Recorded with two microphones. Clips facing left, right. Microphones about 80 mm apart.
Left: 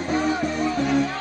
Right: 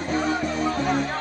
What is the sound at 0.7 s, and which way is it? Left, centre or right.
Music, right.